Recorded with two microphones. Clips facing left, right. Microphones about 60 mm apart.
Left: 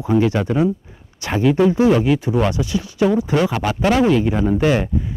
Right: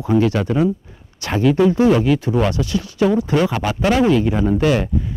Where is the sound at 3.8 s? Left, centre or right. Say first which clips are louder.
Even; left.